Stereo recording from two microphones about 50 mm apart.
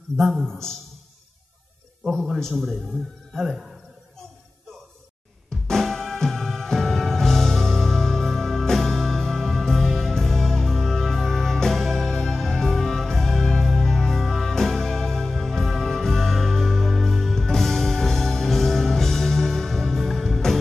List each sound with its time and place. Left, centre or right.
0.2 s a man's voice: centre
2.1 s a man's voice: centre
5.5 s music: centre